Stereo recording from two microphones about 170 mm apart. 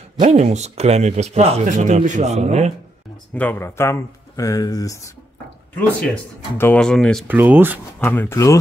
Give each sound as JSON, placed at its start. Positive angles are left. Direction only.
{"t": 0.2, "sound": "speech", "side_deg": -40}
{"t": 3.3, "sound": "speech", "side_deg": 10}
{"t": 5.8, "sound": "speech", "side_deg": 5}
{"t": 7.2, "sound": "speech", "side_deg": -10}
{"t": 8.0, "sound": "speech", "side_deg": 10}